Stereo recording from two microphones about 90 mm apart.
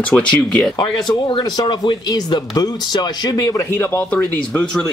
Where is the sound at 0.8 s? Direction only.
50° left (ahead or behind).